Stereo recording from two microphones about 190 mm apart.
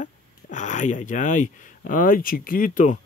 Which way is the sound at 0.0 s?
40° left (ahead or behind).